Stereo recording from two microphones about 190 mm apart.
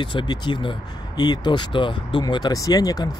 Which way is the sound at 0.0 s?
25° left (ahead or behind).